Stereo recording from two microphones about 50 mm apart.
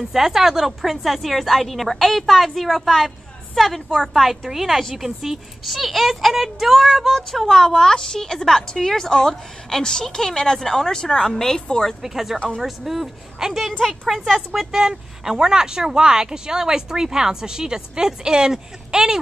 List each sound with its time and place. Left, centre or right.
0.0 s a woman's voice: centre
7.2 s a woman's voice: centre
12.0 s a woman's voice: centre